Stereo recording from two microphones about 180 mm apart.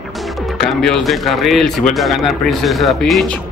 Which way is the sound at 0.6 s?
Centre (ahead or behind).